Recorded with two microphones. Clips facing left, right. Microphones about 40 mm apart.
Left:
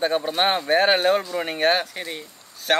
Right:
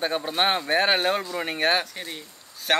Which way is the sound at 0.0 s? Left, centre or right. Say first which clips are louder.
Left 3 dB; centre.